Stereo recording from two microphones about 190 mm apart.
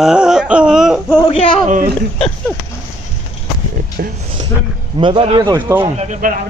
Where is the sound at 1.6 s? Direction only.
45° right (ahead or behind).